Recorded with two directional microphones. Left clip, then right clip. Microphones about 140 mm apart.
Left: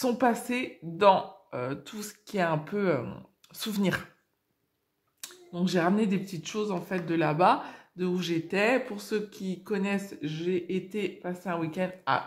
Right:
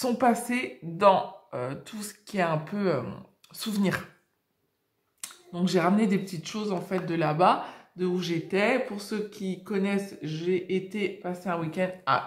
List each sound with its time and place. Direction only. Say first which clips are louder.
0.0 s speech: right 2 dB; 35° left (ahead or behind)
5.2 s speech: right 1 dB; 35° left (ahead or behind)